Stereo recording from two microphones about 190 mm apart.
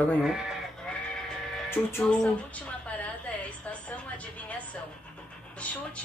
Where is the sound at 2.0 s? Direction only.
5° left (ahead or behind).